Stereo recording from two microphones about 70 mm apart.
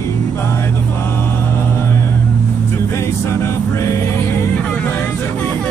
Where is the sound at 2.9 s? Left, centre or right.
Left.